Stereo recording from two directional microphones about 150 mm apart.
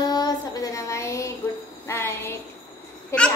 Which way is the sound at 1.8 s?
15° left (ahead or behind).